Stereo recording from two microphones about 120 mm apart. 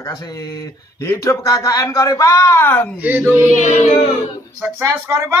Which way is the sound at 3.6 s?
70° left (ahead or behind).